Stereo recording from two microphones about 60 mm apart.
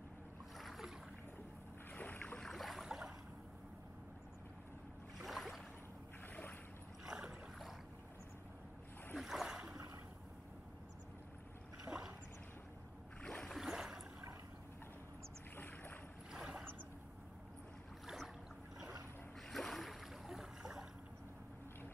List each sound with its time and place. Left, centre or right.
0.6 s boat: centre
2.0 s boat: left
2.3 s a sound: centre
5.2 s boat: centre
7.1 s boat: centre
9.2 s a sound: centre
11.9 s boat: centre
13.2 s a sound: centre
13.5 s boat: centre
15.5 s boat: left
16.3 s boat: centre
18.0 s boat: centre
19.5 s a sound: centre